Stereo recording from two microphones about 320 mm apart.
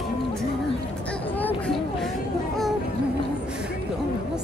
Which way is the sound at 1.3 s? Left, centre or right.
Centre.